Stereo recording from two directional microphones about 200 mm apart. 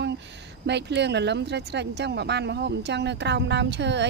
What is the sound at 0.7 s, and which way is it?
Speech, 60° right (ahead or behind).